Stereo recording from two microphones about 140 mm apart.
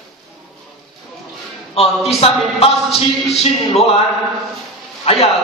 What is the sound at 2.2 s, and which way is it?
Music, 45° left (ahead or behind).